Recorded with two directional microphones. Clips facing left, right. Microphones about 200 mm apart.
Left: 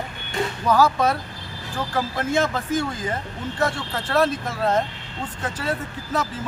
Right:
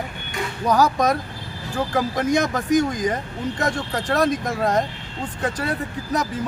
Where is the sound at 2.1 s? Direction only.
15° right (ahead or behind).